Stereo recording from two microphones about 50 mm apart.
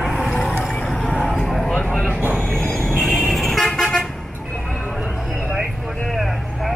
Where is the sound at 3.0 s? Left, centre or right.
Centre.